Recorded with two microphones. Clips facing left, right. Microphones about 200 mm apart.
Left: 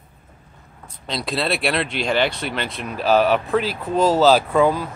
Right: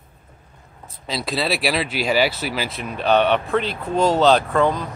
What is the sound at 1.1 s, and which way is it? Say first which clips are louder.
Speech: even; centre (ahead or behind).